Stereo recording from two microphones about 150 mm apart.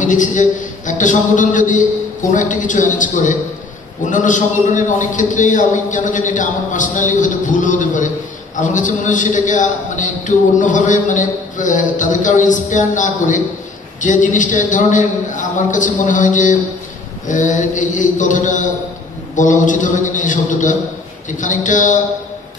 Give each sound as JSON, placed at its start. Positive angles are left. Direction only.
{"t": 0.0, "sound": "a man's voice", "side_deg": 60}